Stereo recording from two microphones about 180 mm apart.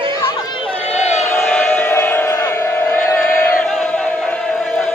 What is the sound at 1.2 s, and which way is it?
Crowd, 10° left (ahead or behind).